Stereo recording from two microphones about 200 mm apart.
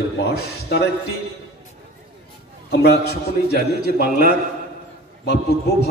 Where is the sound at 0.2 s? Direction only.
55° left (ahead or behind).